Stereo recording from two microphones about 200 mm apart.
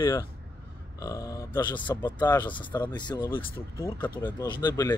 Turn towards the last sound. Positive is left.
turn(degrees=20)  # may be behind; listen again after turning